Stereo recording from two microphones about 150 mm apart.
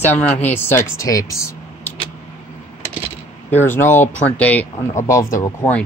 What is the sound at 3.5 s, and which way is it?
Speech, 15° left (ahead or behind).